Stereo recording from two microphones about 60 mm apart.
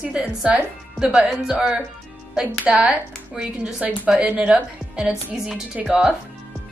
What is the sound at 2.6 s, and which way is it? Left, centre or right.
A woman's voice, centre.